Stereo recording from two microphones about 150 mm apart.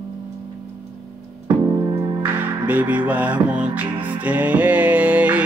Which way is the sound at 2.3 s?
15° right (ahead or behind).